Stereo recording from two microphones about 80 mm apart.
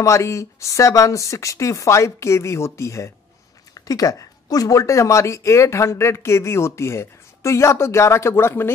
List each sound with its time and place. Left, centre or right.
0.0 s speech: left
3.7 s speech: left